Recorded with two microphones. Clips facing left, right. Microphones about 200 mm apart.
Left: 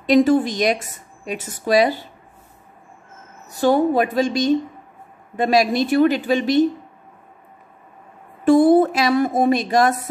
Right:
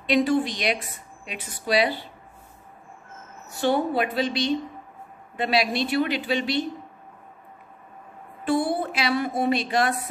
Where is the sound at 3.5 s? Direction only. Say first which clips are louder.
Left 6 dB; 45° left (ahead or behind).